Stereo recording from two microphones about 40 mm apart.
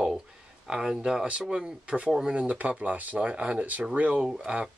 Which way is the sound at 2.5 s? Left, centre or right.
Right.